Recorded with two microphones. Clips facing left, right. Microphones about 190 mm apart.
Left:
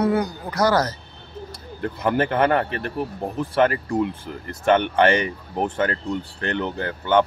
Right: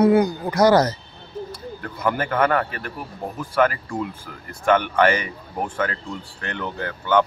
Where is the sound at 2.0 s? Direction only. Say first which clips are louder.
Left 1 dB; 25° left (ahead or behind).